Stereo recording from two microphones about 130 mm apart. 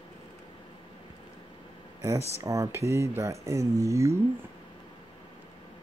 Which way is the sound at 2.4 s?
20° right (ahead or behind).